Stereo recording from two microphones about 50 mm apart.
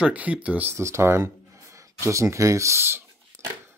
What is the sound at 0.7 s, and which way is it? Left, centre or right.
Speech, right.